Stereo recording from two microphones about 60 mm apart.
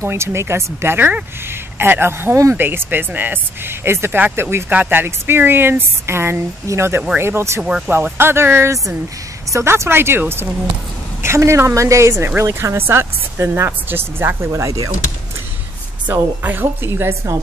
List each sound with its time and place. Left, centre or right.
0.0 s speech: right
7.6 s speech: centre
8.2 s speech: right
9.5 s speech: right
9.8 s speech: right
14.5 s speech: right
16.1 s speech: right